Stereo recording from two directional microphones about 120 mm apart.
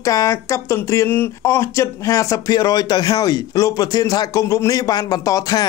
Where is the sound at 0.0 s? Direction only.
25° left (ahead or behind).